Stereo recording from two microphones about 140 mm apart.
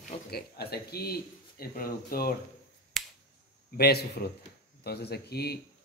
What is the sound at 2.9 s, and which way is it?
Finger snapping, centre (ahead or behind).